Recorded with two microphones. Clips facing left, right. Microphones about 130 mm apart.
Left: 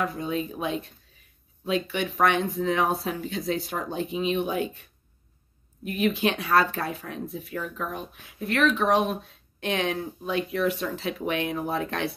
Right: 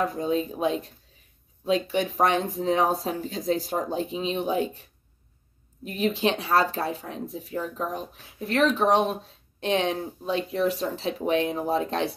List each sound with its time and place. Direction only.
0.0 s speech: 35° right (ahead or behind)
5.9 s speech: 30° right (ahead or behind)